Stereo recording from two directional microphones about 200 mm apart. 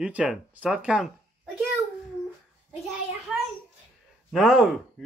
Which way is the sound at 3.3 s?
5° right (ahead or behind).